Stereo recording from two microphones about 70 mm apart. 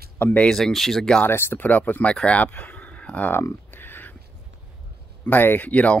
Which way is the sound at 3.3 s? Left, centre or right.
Left.